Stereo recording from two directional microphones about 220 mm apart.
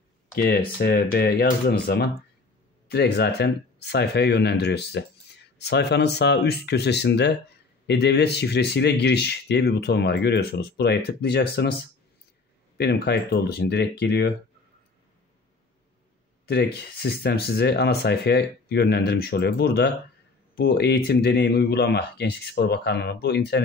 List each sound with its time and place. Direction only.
0.7 s speech: 45° left (ahead or behind)
12.7 s speech: 50° left (ahead or behind)
16.4 s speech: 50° left (ahead or behind)